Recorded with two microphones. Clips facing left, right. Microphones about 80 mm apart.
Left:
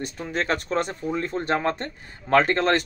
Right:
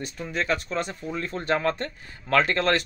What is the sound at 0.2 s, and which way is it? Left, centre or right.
Speech, left.